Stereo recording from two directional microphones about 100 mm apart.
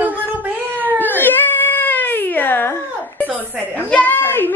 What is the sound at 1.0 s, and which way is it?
Cat, 20° left (ahead or behind).